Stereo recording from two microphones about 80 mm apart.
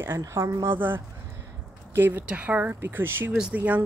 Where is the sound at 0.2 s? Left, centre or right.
Right.